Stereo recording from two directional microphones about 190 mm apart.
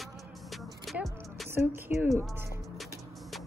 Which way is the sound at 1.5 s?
10° right (ahead or behind).